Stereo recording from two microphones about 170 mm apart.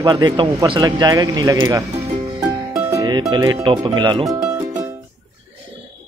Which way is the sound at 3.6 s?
25° right (ahead or behind).